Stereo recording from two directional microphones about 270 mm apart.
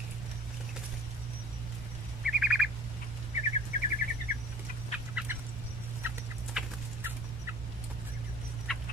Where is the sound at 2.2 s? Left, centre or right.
Centre.